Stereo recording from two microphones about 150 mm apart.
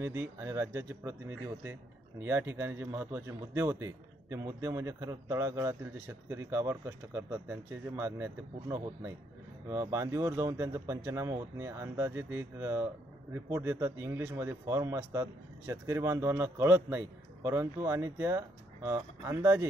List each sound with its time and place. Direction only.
0.0 s a man's voice: 15° right (ahead or behind)